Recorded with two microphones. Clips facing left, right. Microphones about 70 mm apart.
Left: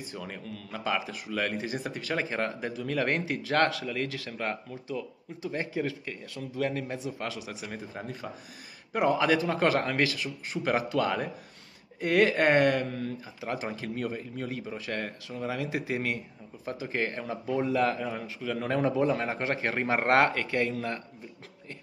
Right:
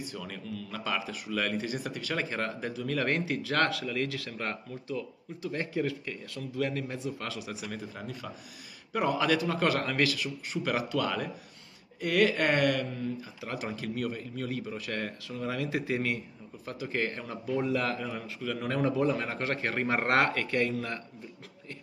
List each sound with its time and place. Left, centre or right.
0.2 s a man's voice: centre
1.8 s speech: left
2.1 s a man's voice: centre
7.9 s speech: left
8.9 s a man's voice: centre